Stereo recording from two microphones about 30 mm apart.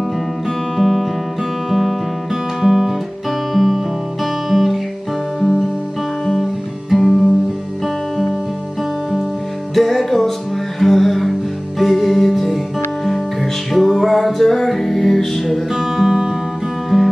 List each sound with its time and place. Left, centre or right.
0.7 s guitar: centre
2.6 s guitar: centre
3.5 s guitar: centre
6.9 s music: centre
9.8 s music: centre
13.7 s music: centre
14.0 s music: centre